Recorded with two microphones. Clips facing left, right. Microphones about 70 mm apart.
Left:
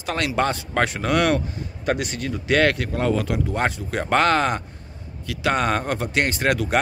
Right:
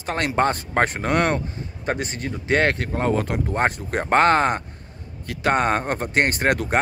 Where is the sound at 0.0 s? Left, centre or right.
Right.